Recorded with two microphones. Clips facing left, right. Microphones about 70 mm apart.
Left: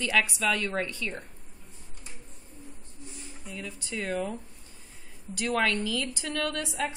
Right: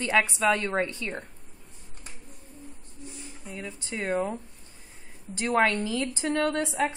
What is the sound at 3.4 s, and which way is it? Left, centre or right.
A woman's voice, right.